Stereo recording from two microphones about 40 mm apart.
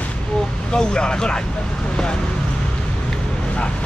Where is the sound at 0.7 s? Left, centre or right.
Centre.